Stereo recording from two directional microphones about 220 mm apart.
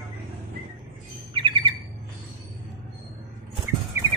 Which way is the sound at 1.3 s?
20° right (ahead or behind).